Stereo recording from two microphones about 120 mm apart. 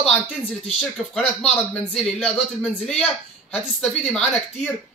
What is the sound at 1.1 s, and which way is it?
A man's voice, 5° left (ahead or behind).